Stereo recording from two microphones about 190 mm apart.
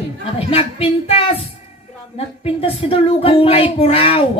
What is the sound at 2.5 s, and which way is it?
Speech, 30° left (ahead or behind).